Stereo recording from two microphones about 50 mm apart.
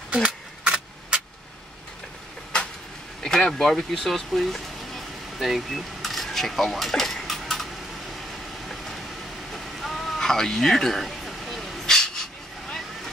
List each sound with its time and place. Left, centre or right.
0.1 s keys jangling: right
3.2 s speech: centre
3.9 s a sound: centre
8.6 s vehicle: centre
9.5 s a sound: centre
11.8 s vehicle: centre